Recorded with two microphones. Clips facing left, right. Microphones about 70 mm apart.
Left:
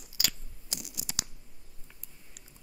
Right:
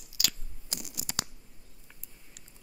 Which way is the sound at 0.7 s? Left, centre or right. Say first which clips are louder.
Right 3 dB; right.